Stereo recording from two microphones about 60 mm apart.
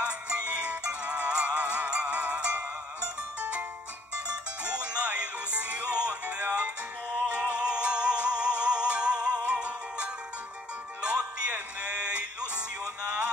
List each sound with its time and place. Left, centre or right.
0.0 s music: centre